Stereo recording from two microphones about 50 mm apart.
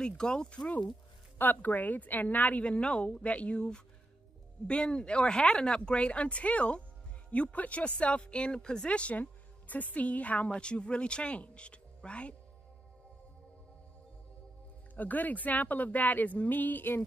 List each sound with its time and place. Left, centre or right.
0.0 s speech: centre
1.4 s speech: left
2.6 s speech: left
15.0 s speech: left